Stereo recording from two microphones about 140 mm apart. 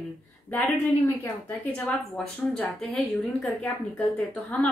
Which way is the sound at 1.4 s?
10° left (ahead or behind).